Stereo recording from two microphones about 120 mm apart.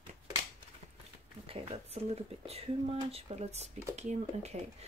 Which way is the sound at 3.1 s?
55° right (ahead or behind).